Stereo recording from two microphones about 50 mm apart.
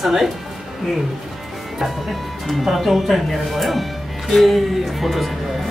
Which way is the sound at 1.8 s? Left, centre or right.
Centre.